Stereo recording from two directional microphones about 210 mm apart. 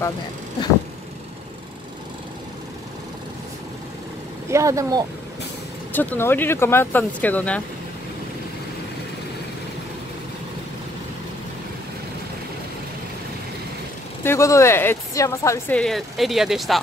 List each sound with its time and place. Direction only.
4.5 s speech: 15° right (ahead or behind)
5.9 s speech: 10° left (ahead or behind)
14.2 s speech: 15° left (ahead or behind)
15.8 s speech: centre (ahead or behind)